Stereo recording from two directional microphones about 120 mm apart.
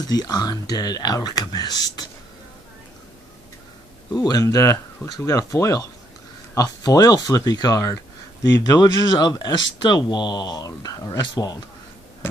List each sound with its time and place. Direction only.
0.0 s speech: 35° left (ahead or behind)
4.1 s speech: 35° left (ahead or behind)